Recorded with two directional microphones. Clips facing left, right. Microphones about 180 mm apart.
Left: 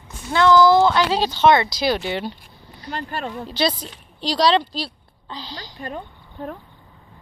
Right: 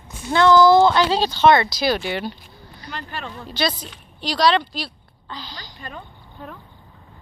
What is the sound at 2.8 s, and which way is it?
Speech, 45° left (ahead or behind).